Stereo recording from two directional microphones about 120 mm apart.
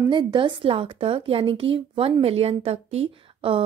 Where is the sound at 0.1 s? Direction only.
40° right (ahead or behind).